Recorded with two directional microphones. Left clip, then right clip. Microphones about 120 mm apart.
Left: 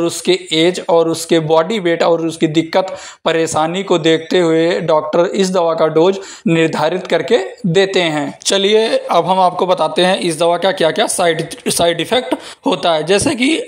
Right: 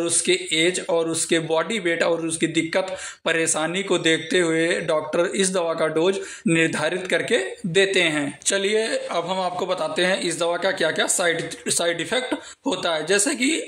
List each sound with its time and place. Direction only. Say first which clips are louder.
0.0 s speech: left 7 dB; 30° left (ahead or behind)
8.5 s a man's voice: left 10 dB; 40° left (ahead or behind)